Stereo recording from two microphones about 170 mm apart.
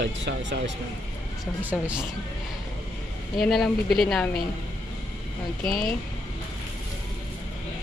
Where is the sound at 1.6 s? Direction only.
10° right (ahead or behind).